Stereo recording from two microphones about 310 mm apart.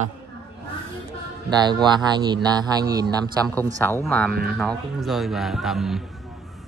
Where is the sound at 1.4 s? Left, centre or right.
Centre.